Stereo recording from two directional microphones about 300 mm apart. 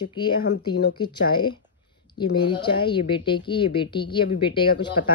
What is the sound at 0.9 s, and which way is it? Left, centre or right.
Speech, centre.